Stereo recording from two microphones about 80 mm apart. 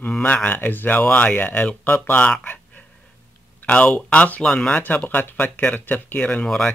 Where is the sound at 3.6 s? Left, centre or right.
Centre.